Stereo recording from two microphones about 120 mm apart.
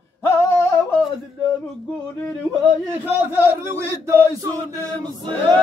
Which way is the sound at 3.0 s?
20° right (ahead or behind).